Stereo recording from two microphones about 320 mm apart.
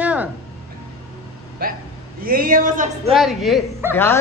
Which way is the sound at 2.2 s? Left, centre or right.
Right.